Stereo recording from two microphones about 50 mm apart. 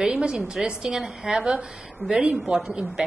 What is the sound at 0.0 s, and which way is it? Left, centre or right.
A woman's voice, centre.